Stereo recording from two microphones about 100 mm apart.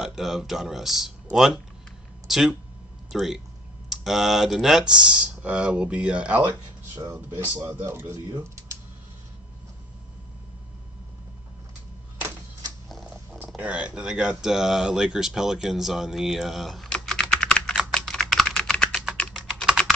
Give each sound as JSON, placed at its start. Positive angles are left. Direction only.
{"t": 0.0, "sound": "speech", "side_deg": -5}
{"t": 8.3, "sound": "speech", "side_deg": -40}
{"t": 13.0, "sound": "purr", "side_deg": -10}
{"t": 13.6, "sound": "speech", "side_deg": -10}
{"t": 17.0, "sound": "typing", "side_deg": 5}
{"t": 19.3, "sound": "typing", "side_deg": -5}